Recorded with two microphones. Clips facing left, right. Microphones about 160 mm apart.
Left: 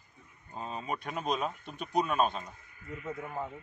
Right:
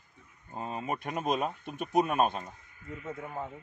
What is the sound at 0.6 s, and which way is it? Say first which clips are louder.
Speech: right 2 dB; 50° right (ahead or behind).